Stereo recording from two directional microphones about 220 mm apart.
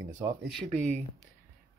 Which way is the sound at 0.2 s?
Centre (ahead or behind).